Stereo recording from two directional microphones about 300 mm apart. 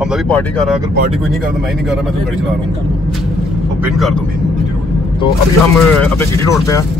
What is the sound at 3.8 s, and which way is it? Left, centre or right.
Speech, centre.